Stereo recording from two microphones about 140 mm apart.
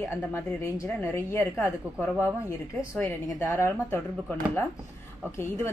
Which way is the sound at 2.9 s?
15° left (ahead or behind).